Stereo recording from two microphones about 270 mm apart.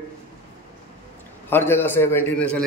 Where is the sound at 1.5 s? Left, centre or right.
Centre.